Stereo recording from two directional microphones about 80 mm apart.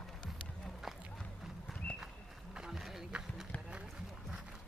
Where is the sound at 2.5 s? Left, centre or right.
Centre.